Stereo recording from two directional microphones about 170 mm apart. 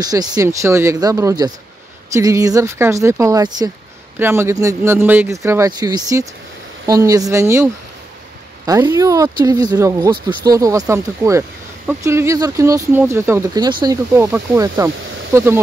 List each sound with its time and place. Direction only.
0.0 s speech: 25° right (ahead or behind)
14.1 s speech: 15° right (ahead or behind)